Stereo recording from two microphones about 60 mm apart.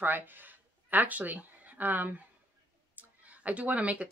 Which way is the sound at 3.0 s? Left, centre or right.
Right.